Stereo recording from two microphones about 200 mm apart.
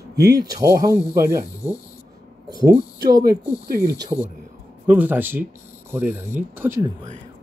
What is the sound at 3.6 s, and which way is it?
Speech, 50° right (ahead or behind).